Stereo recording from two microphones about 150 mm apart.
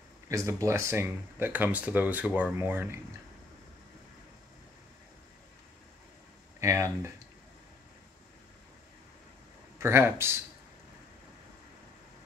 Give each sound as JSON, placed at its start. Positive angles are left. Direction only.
{"t": 0.3, "sound": "speech", "side_deg": -20}
{"t": 6.6, "sound": "speech", "side_deg": -20}
{"t": 9.8, "sound": "speech", "side_deg": -20}